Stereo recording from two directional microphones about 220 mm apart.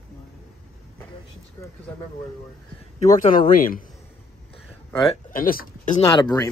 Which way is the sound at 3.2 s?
40° left (ahead or behind).